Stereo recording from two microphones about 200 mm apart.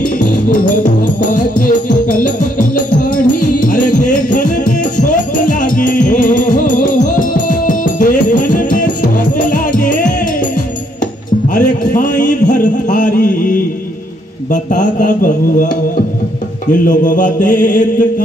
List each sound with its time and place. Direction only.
0.2 s music: 40° left (ahead or behind)
11.5 s a sound: 40° left (ahead or behind)
14.5 s mantra: 40° left (ahead or behind)
16.8 s mantra: 40° left (ahead or behind)